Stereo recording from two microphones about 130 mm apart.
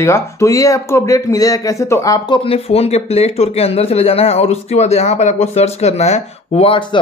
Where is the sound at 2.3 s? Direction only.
45° left (ahead or behind).